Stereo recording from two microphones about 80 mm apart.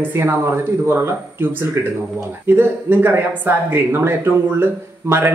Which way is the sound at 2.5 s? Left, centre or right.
Right.